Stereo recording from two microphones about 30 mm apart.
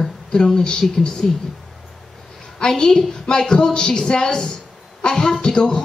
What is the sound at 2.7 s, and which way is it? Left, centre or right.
A woman's voice, centre.